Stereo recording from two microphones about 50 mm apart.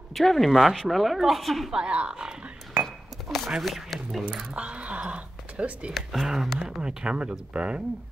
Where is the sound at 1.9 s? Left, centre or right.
Centre.